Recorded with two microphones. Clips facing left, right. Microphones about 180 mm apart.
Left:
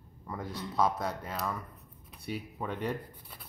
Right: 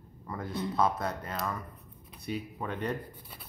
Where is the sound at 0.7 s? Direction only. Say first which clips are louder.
Left 1 dB; 10° left (ahead or behind).